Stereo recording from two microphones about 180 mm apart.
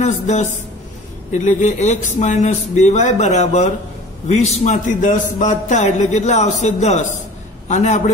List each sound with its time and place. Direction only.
0.0 s a man's voice: 40° left (ahead or behind)